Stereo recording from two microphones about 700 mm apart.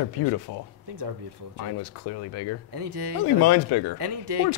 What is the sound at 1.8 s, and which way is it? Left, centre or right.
Speech, left.